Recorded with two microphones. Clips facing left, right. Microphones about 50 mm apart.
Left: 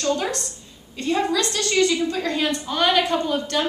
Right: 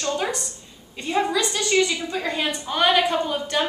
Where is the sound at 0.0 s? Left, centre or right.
Centre.